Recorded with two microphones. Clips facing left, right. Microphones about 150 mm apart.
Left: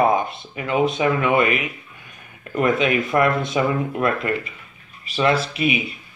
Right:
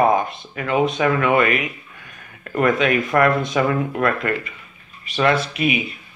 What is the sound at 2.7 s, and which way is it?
Speech, 40° right (ahead or behind).